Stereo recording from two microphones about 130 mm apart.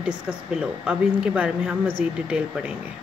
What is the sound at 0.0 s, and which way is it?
Speech, 10° right (ahead or behind).